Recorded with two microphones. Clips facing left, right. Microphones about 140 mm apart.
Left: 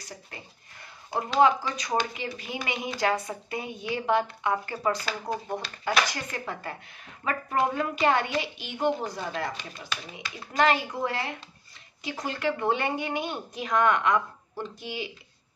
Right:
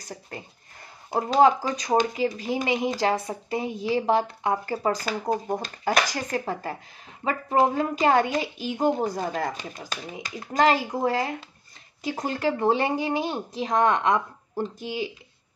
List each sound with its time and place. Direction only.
1.1 s a woman's voice: 40° right (ahead or behind)